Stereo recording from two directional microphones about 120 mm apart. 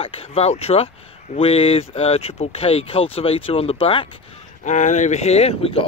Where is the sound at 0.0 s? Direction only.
55° left (ahead or behind).